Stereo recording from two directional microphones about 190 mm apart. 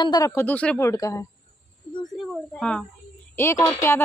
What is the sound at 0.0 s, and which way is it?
Speech, 20° left (ahead or behind).